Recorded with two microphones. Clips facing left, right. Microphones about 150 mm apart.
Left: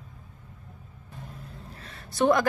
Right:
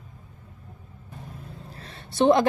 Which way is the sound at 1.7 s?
30° right (ahead or behind).